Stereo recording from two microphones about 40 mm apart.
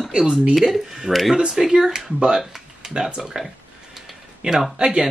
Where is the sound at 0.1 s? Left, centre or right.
Centre.